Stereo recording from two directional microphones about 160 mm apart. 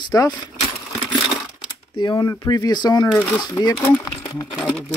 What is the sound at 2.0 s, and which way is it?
Speech, 25° left (ahead or behind).